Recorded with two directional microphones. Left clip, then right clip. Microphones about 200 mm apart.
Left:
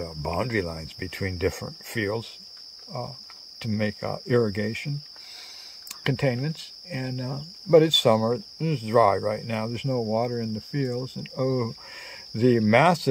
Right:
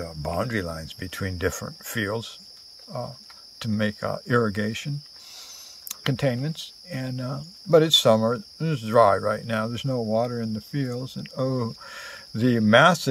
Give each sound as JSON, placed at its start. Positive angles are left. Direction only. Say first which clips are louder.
{"t": 0.0, "sound": "cricket", "louder": "even", "side_deg": 5}
{"t": 3.5, "sound": "cricket", "louder": "right 2 dB", "side_deg": 0}
{"t": 6.0, "sound": "cricket", "louder": "even", "side_deg": 5}